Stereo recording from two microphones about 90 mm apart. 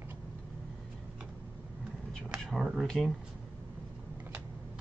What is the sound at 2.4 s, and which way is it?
Speech, centre (ahead or behind).